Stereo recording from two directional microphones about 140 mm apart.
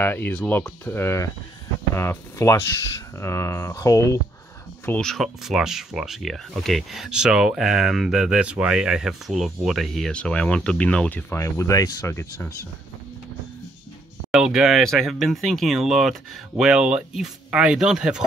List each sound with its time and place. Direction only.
0.0 s speech: 15° left (ahead or behind)
4.8 s speech: 10° left (ahead or behind)
5.1 s speech: centre (ahead or behind); by 12.3 s 20° left (ahead or behind)
14.3 s speech: 5° right (ahead or behind)